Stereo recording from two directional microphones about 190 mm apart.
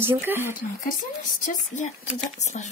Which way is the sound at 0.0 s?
10° right (ahead or behind).